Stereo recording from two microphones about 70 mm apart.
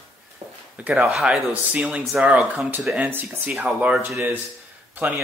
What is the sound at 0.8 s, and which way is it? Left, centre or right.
Speech, centre.